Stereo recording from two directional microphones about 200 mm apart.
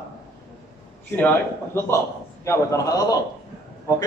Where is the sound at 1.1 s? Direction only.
10° left (ahead or behind).